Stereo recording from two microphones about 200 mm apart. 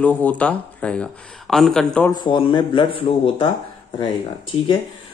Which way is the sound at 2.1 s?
25° left (ahead or behind).